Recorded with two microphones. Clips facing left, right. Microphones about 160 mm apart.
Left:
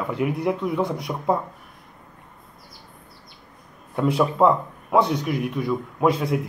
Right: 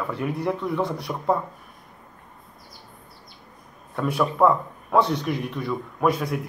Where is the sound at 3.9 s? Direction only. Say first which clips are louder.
Left 3 dB; 20° left (ahead or behind).